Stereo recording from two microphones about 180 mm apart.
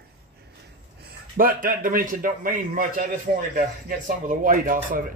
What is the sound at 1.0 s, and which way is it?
A man's voice, 50° right (ahead or behind).